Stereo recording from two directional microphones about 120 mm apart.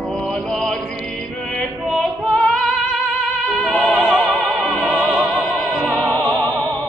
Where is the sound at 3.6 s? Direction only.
Centre (ahead or behind).